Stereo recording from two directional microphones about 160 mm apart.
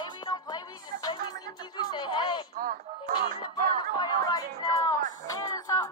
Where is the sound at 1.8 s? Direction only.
25° left (ahead or behind).